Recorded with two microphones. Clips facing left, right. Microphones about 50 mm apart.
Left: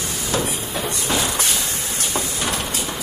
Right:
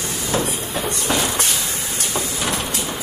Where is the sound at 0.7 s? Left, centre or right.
Centre.